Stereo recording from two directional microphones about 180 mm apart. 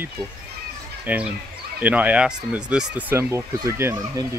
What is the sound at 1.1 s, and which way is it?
Speech, 10° right (ahead or behind).